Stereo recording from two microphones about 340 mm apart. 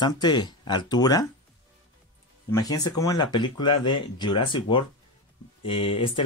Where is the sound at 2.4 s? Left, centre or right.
Centre.